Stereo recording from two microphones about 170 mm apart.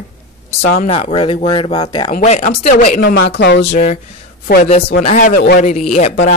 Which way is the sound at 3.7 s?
40° left (ahead or behind).